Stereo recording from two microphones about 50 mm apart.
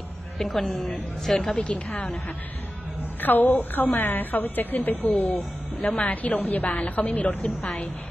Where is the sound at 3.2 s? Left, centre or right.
Left.